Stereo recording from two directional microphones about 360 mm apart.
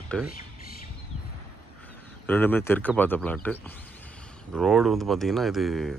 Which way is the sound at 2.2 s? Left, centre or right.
Centre.